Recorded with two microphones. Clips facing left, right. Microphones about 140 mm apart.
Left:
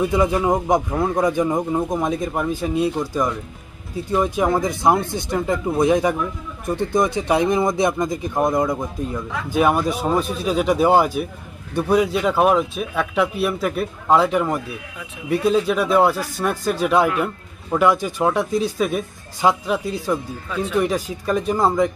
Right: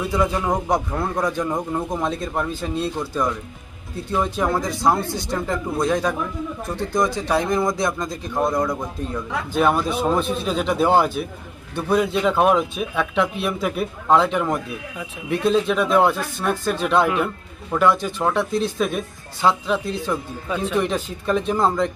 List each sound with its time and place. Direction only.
0.0 s a man's voice: 20° left (ahead or behind)
7.2 s a man's voice: 20° left (ahead or behind)
9.1 s a man's voice: 10° left (ahead or behind)